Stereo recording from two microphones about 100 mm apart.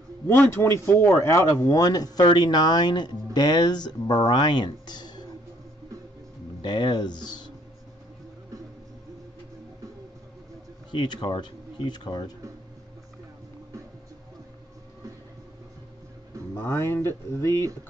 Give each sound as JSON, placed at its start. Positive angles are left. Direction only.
{"t": 0.3, "sound": "speech", "side_deg": 20}
{"t": 6.6, "sound": "speech", "side_deg": 50}
{"t": 10.9, "sound": "speech", "side_deg": 50}
{"t": 16.5, "sound": "speech", "side_deg": 25}